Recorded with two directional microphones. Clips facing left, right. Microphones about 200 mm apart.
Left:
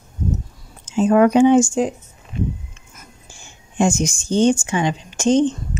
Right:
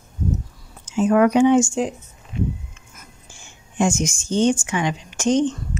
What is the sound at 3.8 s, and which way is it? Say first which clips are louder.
Speech: left 2 dB; 35° left (ahead or behind).